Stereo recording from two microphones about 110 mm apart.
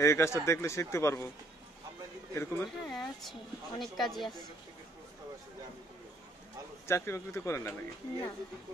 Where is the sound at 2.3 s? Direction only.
20° left (ahead or behind).